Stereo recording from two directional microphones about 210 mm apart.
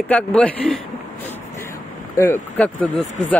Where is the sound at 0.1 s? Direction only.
5° left (ahead or behind).